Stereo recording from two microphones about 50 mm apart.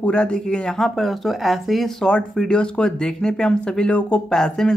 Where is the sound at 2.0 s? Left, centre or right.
Centre.